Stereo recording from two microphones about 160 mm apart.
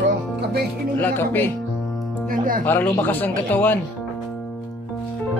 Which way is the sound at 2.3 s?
60° right (ahead or behind).